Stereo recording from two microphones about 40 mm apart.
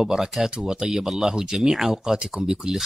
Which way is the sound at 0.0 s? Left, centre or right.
Centre.